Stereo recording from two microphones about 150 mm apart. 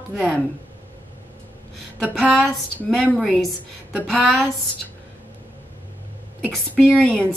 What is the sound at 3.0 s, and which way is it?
Speech, 5° right (ahead or behind).